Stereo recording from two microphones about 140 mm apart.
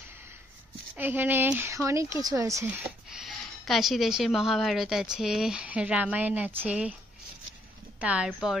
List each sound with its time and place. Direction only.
0.9 s speech: 15° right (ahead or behind)
3.1 s a woman's voice: centre (ahead or behind)
8.0 s a woman's voice: 5° right (ahead or behind)